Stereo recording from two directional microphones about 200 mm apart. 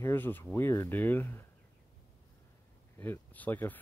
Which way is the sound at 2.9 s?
10° left (ahead or behind).